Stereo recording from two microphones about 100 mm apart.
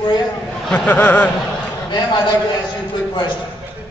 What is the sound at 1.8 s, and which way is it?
Speech, 50° left (ahead or behind).